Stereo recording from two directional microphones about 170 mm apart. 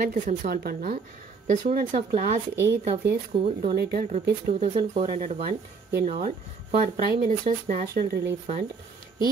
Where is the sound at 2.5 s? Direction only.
15° right (ahead or behind).